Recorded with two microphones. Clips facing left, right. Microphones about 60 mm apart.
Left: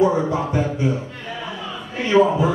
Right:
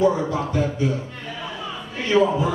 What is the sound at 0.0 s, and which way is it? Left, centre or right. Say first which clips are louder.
Speech: left 2 dB; left.